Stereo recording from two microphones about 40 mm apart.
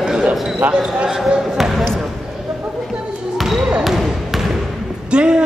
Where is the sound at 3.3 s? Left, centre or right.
Centre.